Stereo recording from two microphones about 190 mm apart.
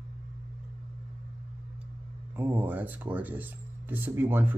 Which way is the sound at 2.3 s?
10° right (ahead or behind).